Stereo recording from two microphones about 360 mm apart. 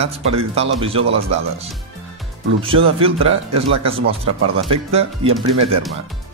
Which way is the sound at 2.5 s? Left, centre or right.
Centre.